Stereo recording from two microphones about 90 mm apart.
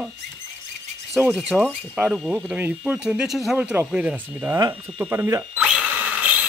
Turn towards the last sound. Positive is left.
turn(degrees=-15)  # may be behind; listen again after turning